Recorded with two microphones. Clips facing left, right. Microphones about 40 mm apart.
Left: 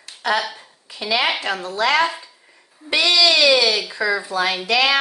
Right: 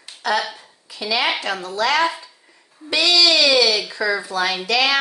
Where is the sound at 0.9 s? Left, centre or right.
Left.